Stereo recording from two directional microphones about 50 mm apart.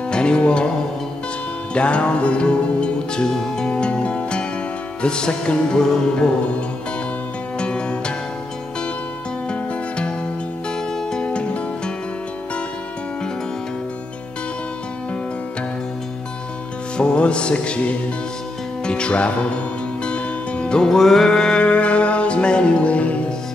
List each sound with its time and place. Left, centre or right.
0.1 s music: centre
1.7 s music: left
7.5 s music: left
9.5 s music: left
16.9 s music: left